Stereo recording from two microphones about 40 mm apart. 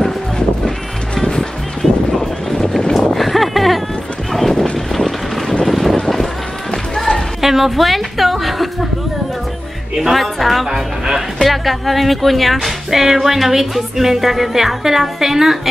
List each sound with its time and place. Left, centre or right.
0.7 s music: centre
3.2 s a sound: centre
4.3 s horse: centre
5.7 s vehicle: centre
6.7 s music: centre
7.4 s a sound: centre
10.1 s speech: centre
10.7 s music: centre
11.4 s speech: centre